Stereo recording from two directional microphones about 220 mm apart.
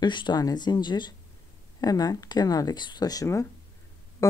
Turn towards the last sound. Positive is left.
turn(degrees=15)  # may be behind; listen again after turning